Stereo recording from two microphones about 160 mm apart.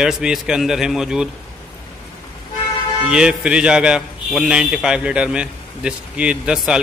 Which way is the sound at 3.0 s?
5° right (ahead or behind).